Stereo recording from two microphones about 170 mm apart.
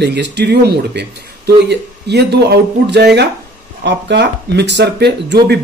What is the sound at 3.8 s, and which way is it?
Speech, 90° right.